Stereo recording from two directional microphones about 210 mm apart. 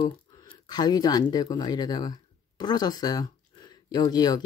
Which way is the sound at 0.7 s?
20° left (ahead or behind).